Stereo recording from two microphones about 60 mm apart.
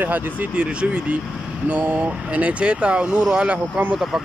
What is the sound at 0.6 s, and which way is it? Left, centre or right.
Speech, centre.